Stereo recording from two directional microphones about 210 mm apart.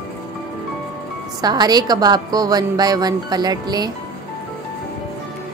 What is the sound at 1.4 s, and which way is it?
A woman's voice, 20° right (ahead or behind).